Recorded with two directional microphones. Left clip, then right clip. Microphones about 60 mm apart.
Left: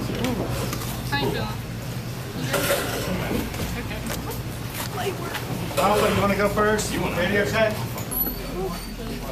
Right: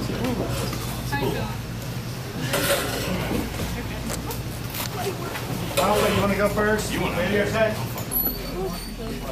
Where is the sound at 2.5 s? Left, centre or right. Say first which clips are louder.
Even; centre.